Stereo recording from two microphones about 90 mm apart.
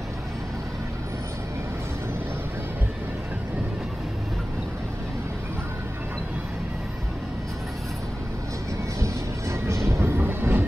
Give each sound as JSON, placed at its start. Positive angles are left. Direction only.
{"t": 9.0, "sound": "music", "side_deg": -35}
{"t": 9.8, "sound": "train", "side_deg": -25}